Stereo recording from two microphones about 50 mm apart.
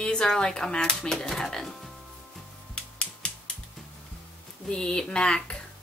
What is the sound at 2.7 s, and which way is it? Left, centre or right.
Finger snapping, left.